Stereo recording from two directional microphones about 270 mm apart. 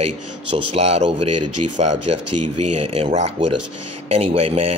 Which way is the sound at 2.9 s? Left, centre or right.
Right.